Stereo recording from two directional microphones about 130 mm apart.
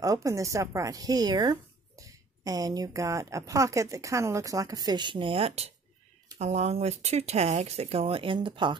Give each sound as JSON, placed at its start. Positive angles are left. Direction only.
{"t": 0.0, "sound": "speech", "side_deg": -25}